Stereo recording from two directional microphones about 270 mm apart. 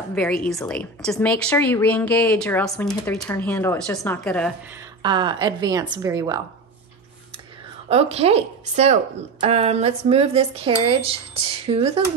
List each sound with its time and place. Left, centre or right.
0.1 s speech: centre
5.0 s a woman's voice: centre
7.9 s speech: right